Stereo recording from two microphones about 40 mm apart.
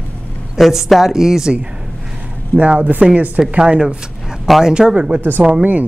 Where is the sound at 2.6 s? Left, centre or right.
Right.